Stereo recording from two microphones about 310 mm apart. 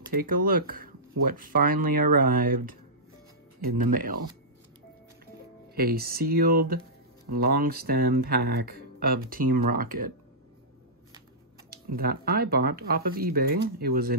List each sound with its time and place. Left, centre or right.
0.1 s speech: right
5.8 s speech: right
11.7 s speech: right